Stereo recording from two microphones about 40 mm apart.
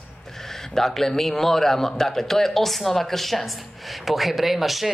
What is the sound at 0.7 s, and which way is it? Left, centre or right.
Speech, centre.